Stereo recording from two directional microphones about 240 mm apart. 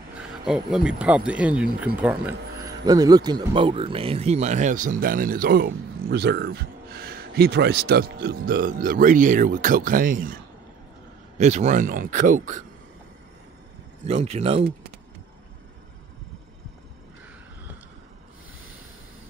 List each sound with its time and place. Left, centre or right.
0.5 s speech: centre; by 12.6 s right
14.0 s speech: right